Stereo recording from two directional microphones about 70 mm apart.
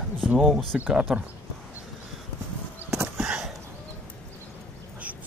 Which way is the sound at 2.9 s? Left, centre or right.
Right.